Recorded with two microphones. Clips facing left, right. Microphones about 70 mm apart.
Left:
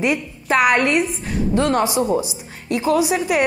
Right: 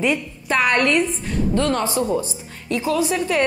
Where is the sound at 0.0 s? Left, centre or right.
Centre.